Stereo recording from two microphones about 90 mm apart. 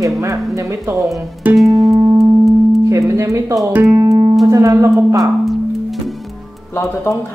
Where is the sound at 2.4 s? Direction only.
35° right (ahead or behind).